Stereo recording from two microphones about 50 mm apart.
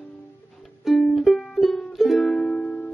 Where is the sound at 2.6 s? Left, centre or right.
Left.